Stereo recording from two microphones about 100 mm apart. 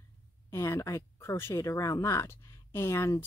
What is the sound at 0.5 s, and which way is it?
Speech, 30° left (ahead or behind).